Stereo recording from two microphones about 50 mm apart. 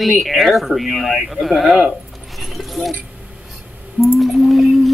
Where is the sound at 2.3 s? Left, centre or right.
Centre.